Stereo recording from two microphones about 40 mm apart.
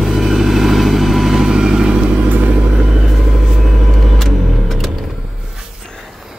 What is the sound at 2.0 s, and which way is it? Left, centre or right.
Vehicle, right.